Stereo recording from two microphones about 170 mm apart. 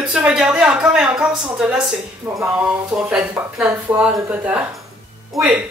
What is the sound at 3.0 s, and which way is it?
A woman's voice, centre (ahead or behind).